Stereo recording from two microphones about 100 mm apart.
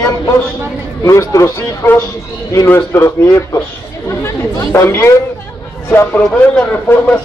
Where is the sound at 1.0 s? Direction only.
30° left (ahead or behind).